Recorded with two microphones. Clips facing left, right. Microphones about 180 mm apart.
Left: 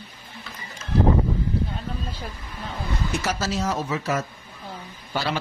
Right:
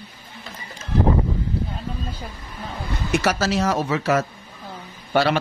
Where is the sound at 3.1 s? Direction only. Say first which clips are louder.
Right 8 dB; 75° right (ahead or behind).